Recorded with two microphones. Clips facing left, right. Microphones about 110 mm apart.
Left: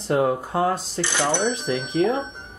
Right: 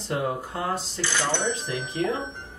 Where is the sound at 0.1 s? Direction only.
50° left (ahead or behind).